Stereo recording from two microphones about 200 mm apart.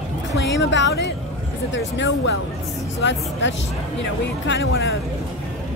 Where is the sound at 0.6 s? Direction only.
65° left (ahead or behind).